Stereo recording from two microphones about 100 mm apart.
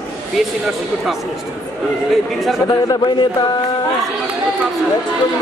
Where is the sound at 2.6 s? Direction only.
45° left (ahead or behind).